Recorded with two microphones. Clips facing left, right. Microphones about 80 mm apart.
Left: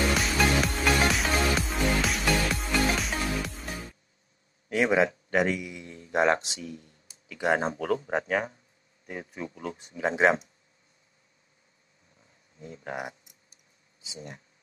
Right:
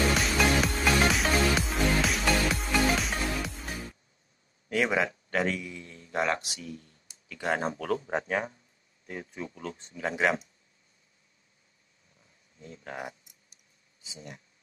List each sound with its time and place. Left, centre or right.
0.1 s music: centre
4.6 s a man's voice: left
5.9 s speech: left
9.4 s speech: left
12.5 s speech: left